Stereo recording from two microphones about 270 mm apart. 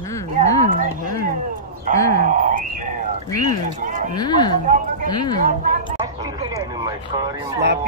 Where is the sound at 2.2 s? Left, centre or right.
Right.